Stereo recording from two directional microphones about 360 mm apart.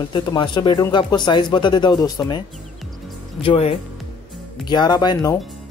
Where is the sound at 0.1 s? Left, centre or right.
Centre.